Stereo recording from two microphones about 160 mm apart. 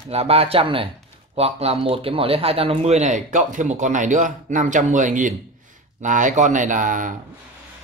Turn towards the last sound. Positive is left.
turn(degrees=-55)  # may be behind; listen again after turning